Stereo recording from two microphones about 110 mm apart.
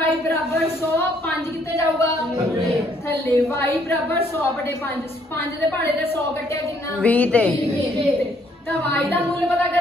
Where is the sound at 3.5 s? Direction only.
25° left (ahead or behind).